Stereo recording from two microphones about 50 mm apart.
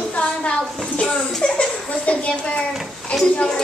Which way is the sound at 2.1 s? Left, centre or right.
Left.